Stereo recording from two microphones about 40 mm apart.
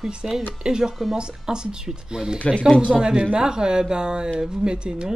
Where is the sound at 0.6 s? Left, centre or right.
Centre.